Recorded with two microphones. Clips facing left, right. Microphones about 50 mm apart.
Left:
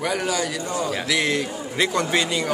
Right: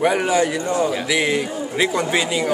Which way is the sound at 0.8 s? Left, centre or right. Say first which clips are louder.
Right 3 dB; centre.